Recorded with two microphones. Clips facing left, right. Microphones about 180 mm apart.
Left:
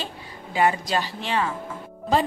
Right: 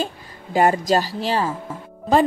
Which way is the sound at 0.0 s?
45° right (ahead or behind).